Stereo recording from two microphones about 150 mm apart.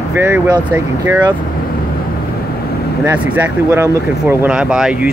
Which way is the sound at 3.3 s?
15° right (ahead or behind).